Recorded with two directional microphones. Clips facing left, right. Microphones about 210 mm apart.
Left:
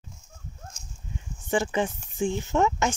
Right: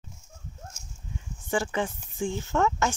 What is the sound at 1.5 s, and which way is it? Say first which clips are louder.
Speech: left 3 dB; 20° left (ahead or behind).